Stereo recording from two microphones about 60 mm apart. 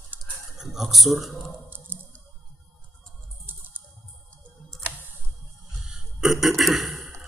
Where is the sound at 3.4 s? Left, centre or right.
Right.